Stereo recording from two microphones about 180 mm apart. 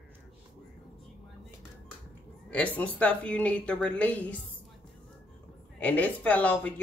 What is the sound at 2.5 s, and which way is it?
Speech, 10° left (ahead or behind).